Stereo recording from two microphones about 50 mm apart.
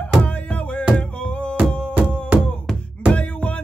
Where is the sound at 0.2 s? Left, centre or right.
Left.